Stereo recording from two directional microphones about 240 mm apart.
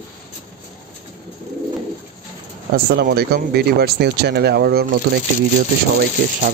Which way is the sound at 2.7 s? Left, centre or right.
Right.